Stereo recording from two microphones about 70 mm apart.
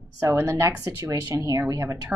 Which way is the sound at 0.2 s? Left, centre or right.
Right.